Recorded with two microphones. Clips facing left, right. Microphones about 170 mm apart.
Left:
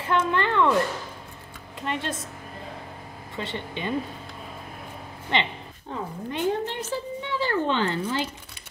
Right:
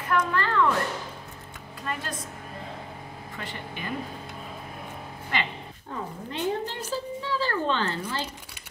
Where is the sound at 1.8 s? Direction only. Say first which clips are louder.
Left 4 dB; 25° left (ahead or behind).